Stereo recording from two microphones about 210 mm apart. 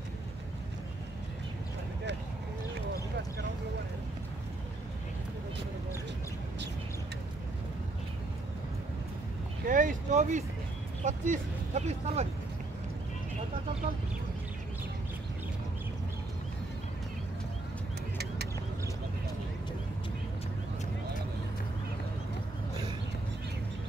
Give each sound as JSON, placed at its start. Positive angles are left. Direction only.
{"t": 9.7, "sound": "vehicle", "side_deg": -40}
{"t": 11.1, "sound": "speech", "side_deg": -35}
{"t": 18.1, "sound": "bird", "side_deg": -50}